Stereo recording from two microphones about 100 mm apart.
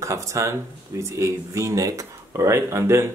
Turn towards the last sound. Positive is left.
turn(degrees=-25)  # may be behind; listen again after turning